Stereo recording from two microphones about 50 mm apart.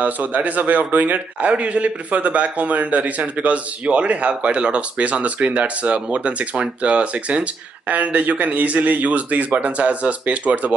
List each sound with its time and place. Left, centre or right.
0.0 s a man's voice: right